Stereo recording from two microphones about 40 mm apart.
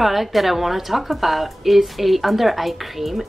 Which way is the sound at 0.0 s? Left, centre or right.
Centre.